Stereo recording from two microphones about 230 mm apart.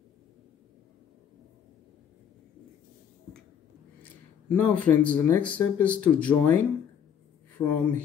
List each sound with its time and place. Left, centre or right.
4.5 s speech: centre